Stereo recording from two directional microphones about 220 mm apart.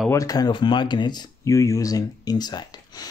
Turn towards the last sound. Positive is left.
turn(degrees=20)  # may be behind; listen again after turning